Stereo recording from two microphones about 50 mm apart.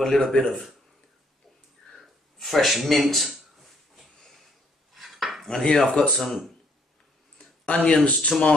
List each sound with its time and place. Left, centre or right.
0.0 s speech: centre
2.4 s a sound: centre
4.9 s dishes: centre
5.9 s speech: centre
6.1 s speech: centre
7.3 s speech: left